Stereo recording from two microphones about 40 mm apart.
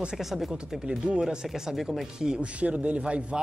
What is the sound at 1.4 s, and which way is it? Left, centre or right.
Speech, centre.